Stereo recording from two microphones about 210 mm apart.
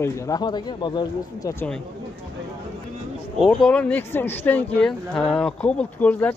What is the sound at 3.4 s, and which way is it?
Speech, centre (ahead or behind).